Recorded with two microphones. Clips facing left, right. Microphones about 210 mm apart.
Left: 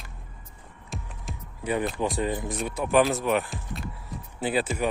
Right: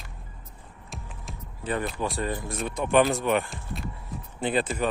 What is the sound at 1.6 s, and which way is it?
Speech, 15° left (ahead or behind).